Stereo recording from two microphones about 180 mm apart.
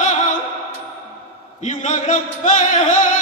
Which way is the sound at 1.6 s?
40° left (ahead or behind).